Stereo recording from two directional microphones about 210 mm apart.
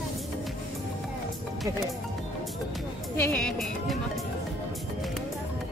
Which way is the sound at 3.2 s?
5° left (ahead or behind).